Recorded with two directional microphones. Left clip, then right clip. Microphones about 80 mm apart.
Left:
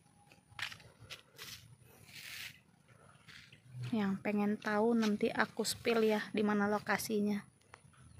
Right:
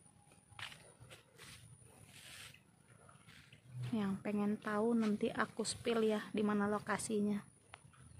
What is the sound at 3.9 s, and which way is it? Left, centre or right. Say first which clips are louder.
A woman's voice: left 4 dB; left.